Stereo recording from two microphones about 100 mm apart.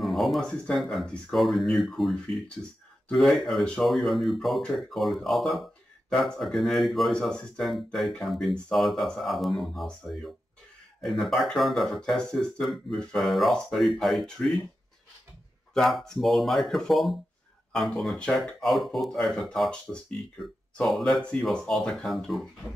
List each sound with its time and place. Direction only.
0.0 s a sound: centre (ahead or behind)
0.7 s speech: centre (ahead or behind)
15.7 s speech: centre (ahead or behind)